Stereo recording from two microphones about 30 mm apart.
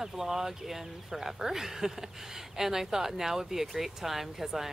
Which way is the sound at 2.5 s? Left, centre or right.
Centre.